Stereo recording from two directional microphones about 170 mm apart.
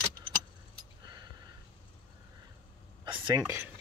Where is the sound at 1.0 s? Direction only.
25° right (ahead or behind).